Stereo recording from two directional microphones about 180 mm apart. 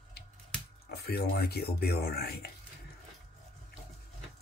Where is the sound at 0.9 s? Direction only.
60° left (ahead or behind).